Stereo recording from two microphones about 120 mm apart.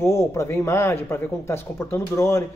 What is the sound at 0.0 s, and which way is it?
Speech, 25° left (ahead or behind).